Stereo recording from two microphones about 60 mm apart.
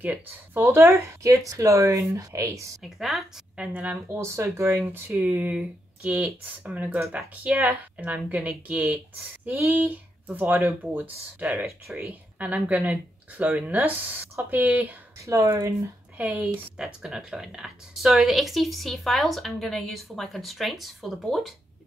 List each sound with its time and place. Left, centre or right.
0.0 s speech: right
0.7 s speech: right
2.8 s speech: centre
3.5 s speech: right
4.2 s speech: right
5.2 s speech: right
15.2 s speech: right
16.2 s speech: right
16.4 s speech: centre